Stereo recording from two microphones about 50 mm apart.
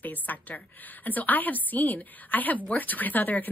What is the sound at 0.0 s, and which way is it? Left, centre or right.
A woman's voice, left.